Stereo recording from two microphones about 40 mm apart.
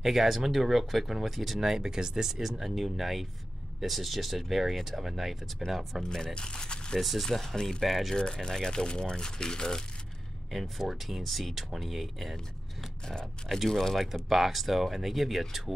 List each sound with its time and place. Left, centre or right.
0.0 s speech: centre
6.0 s speech: centre
7.0 s speech: centre
7.2 s speech: centre
7.8 s speech: centre
8.2 s speech: centre
10.5 s speech: centre
13.0 s speech: centre
14.3 s speech: centre